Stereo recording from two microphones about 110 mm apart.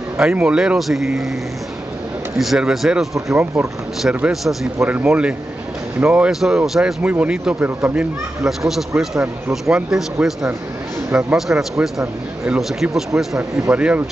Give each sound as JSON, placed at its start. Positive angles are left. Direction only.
{"t": 0.2, "sound": "speech", "side_deg": -10}
{"t": 2.3, "sound": "speech", "side_deg": 0}
{"t": 11.1, "sound": "a man's voice", "side_deg": -15}
{"t": 11.3, "sound": "speech", "side_deg": -5}